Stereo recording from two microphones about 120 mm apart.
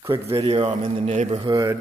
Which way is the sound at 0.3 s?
55° right (ahead or behind).